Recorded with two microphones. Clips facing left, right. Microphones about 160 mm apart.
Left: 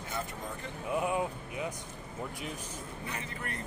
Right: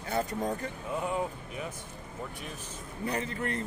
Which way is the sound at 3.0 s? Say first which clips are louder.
Right 10 dB; 35° right (ahead or behind).